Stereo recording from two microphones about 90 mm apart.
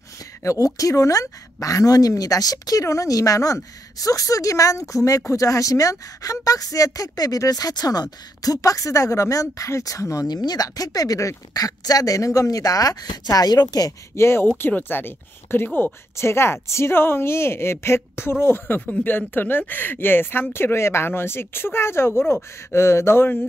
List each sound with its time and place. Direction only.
0.4 s speech: 35° left (ahead or behind)
14.1 s speech: 30° left (ahead or behind)